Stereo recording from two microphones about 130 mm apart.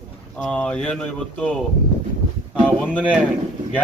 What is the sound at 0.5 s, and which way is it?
A man's voice, 10° left (ahead or behind).